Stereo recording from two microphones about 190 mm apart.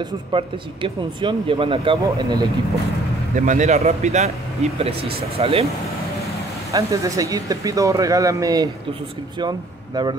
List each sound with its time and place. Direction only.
0.0 s speech: 25° right (ahead or behind)
3.3 s speech: 40° right (ahead or behind)
6.7 s speech: 15° right (ahead or behind)